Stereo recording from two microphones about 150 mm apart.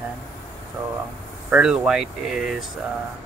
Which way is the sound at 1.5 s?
5° right (ahead or behind).